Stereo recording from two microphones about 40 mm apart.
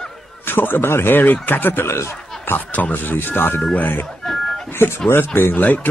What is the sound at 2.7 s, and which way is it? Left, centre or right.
Speech, left.